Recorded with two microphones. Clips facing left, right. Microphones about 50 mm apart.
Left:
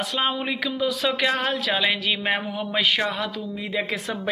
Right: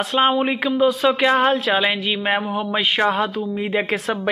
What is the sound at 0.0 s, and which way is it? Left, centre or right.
Speech, right.